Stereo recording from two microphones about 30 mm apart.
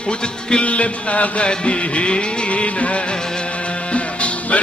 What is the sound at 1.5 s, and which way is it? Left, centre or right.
Music, left.